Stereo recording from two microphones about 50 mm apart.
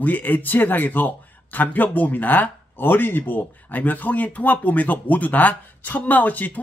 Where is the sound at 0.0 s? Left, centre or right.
Left.